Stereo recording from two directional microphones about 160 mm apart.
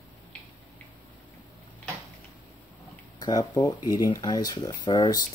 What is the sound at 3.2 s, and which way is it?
Speech, 25° left (ahead or behind).